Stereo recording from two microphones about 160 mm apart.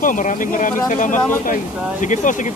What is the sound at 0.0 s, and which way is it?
Speech, 55° left (ahead or behind).